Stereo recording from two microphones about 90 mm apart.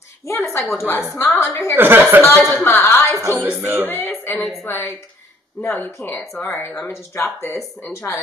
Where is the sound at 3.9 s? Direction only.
25° left (ahead or behind).